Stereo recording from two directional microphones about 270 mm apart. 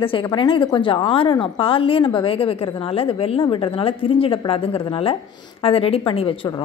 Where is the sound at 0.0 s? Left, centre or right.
Centre.